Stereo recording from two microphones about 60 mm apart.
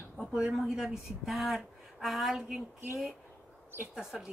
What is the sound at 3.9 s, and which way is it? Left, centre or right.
Speech, centre.